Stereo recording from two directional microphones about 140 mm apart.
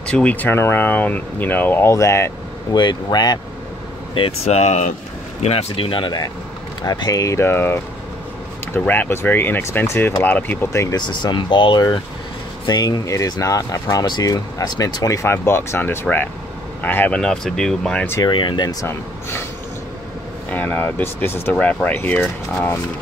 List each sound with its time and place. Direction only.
0.0 s speech: 10° left (ahead or behind)
2.7 s speech: 30° left (ahead or behind)
4.1 s speech: 45° left (ahead or behind); by 18.0 s 5° left (ahead or behind)
18.2 s speech: 35° left (ahead or behind)
20.4 s speech: 10° left (ahead or behind)